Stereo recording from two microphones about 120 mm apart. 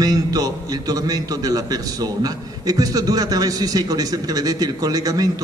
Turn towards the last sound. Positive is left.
turn(degrees=-30)  # may be behind; listen again after turning